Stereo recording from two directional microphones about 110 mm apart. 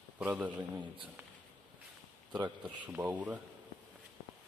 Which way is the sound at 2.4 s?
15° right (ahead or behind).